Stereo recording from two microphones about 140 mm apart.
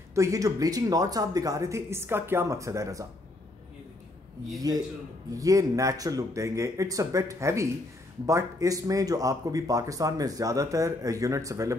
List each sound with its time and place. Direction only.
0.1 s speech: 25° right (ahead or behind)
5.4 s speech: 25° right (ahead or behind)